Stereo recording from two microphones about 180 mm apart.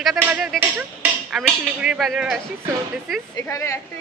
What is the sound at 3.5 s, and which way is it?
Speech, 15° left (ahead or behind).